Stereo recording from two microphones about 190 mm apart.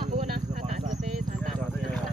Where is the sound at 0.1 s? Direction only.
40° right (ahead or behind).